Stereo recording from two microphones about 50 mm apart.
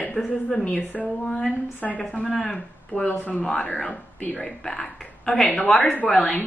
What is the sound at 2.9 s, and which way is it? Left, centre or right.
Speech, left.